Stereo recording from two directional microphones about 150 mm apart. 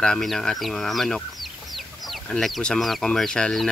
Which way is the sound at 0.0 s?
Centre (ahead or behind).